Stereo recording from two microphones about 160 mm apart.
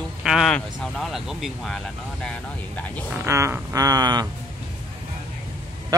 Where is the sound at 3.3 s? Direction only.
20° right (ahead or behind).